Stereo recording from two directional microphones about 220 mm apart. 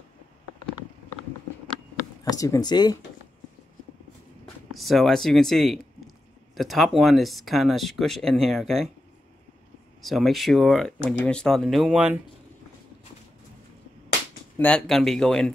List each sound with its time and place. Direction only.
2.2 s speech: 15° left (ahead or behind)
4.6 s speech: centre (ahead or behind)
10.0 s speech: centre (ahead or behind)
14.6 s speech: 5° left (ahead or behind)